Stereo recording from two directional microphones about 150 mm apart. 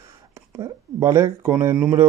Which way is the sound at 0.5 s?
20° right (ahead or behind).